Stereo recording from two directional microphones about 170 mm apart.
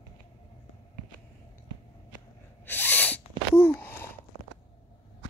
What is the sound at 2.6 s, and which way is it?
Sneeze, 10° left (ahead or behind).